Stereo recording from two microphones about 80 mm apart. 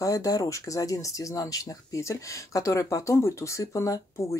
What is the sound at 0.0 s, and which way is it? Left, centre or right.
Speech, left.